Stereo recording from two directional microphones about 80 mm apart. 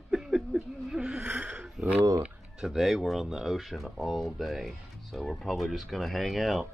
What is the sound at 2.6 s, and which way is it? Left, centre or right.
Speech, centre.